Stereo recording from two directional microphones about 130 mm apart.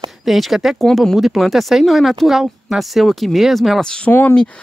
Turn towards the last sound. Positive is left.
turn(degrees=15)  # may be behind; listen again after turning